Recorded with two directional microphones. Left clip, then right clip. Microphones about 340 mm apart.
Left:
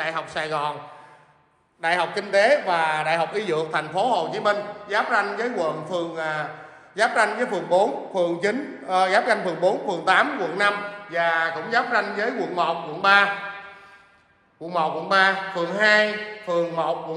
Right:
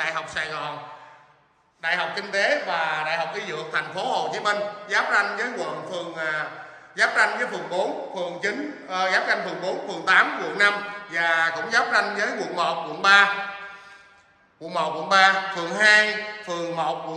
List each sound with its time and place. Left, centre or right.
0.0 s a man's voice: centre
1.8 s a man's voice: centre
14.7 s a man's voice: centre